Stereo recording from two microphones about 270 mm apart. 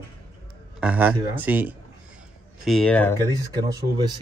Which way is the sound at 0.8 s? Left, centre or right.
Centre.